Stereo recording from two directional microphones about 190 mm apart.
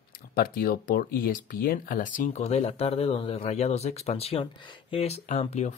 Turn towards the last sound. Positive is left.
turn(degrees=35)  # may be behind; listen again after turning